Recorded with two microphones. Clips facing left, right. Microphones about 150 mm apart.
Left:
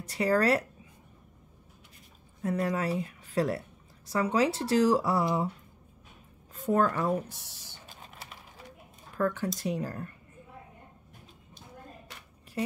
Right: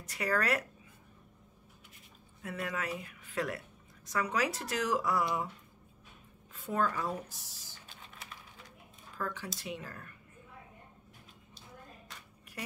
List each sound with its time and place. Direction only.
0.0 s speech: 30° left (ahead or behind)
2.4 s a woman's voice: 35° left (ahead or behind)
6.5 s speech: 45° left (ahead or behind); by 7.8 s 65° left (ahead or behind)
9.1 s speech: 50° left (ahead or behind)
9.6 s speech: 40° left (ahead or behind)
12.6 s a sound: 30° left (ahead or behind)